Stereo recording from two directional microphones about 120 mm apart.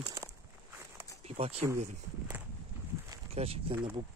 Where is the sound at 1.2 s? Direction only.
60° right (ahead or behind).